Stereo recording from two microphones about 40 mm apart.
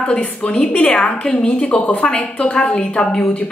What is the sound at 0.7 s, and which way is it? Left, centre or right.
A woman's voice, left.